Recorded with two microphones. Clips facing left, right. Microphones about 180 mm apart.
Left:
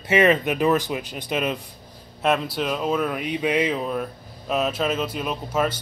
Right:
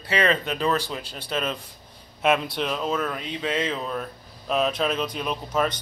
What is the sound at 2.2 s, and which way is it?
Speech, centre (ahead or behind).